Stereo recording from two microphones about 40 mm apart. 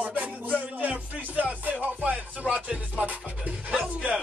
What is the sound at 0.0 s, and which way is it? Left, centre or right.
Music, right.